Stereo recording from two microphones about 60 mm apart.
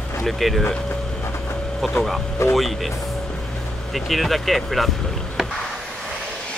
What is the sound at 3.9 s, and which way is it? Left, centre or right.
Speech, centre.